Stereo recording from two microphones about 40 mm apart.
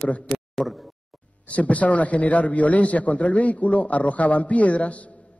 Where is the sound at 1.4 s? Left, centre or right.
Left.